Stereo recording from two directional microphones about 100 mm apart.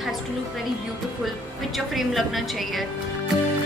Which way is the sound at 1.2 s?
Centre (ahead or behind).